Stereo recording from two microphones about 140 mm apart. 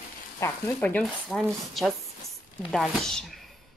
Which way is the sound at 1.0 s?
Centre (ahead or behind).